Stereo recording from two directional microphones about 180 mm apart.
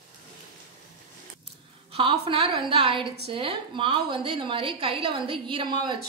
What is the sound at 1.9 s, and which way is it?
A woman's voice, 30° right (ahead or behind).